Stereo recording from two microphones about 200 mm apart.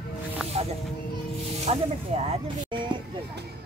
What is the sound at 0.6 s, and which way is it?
Music, 30° right (ahead or behind).